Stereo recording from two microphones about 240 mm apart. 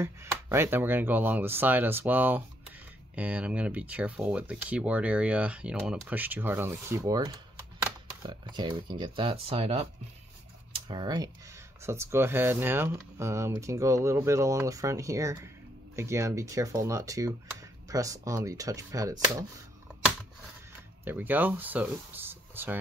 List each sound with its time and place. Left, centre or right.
0.0 s speech: centre
21.0 s speech: centre